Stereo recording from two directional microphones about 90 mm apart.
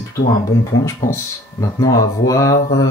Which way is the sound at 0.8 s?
40° left (ahead or behind).